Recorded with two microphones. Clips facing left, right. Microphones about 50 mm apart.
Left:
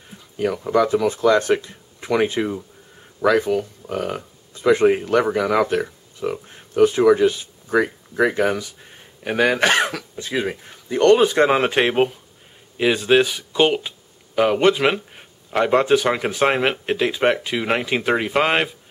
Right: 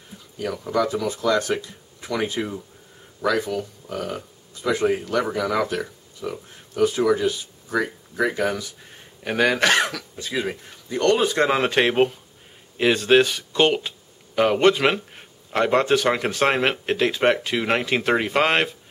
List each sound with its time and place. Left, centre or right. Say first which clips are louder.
0.4 s speech: left 5 dB; centre
7.8 s speech: left 4 dB; centre
8.8 s speech: left 2 dB; centre
10.1 s speech: left 2 dB; left; by 18.8 s centre